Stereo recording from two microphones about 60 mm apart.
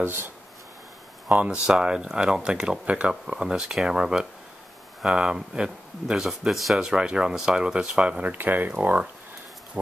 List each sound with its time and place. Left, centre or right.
0.0 s speech: right
1.3 s speech: right
1.7 s speech: centre
8.3 s speech: right